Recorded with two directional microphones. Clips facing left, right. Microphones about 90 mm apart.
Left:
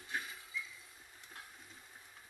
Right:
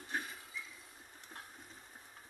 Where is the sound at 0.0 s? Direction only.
40° right (ahead or behind).